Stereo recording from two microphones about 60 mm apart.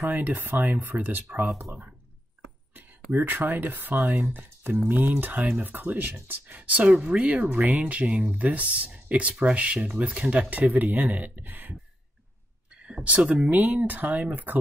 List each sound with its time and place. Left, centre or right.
0.1 s speech: right
3.2 s speech: right
12.7 s speech: centre